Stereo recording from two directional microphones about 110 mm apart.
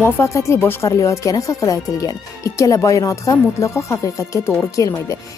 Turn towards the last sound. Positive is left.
turn(degrees=30)  # may be behind; listen again after turning